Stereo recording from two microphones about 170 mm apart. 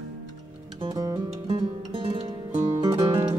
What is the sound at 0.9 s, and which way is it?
Music, 20° right (ahead or behind).